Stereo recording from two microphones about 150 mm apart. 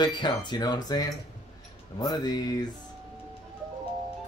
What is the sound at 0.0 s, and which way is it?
Speech, 30° left (ahead or behind).